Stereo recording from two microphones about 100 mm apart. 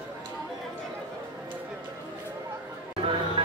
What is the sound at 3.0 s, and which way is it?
Chatter, 60° right (ahead or behind).